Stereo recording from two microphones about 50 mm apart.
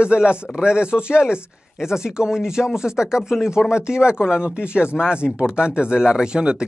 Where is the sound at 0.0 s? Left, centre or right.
Centre.